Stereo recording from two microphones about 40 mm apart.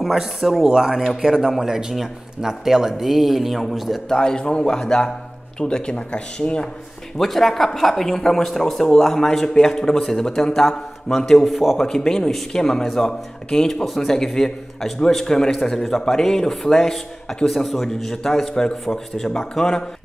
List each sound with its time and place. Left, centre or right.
0.0 s speech: centre
4.1 s speech: centre
7.2 s speech: centre